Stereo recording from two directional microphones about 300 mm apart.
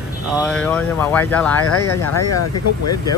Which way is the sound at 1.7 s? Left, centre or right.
Left.